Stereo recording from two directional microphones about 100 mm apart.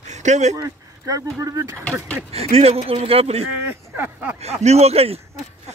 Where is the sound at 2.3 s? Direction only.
90° right.